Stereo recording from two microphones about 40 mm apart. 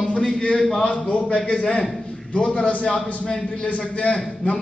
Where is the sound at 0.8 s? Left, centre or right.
Left.